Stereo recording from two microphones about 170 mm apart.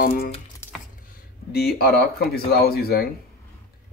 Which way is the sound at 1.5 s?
65° left (ahead or behind).